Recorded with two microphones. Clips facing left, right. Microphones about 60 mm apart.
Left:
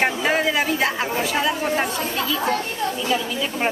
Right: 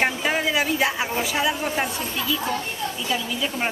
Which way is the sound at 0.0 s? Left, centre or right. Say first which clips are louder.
Left 3 dB; centre.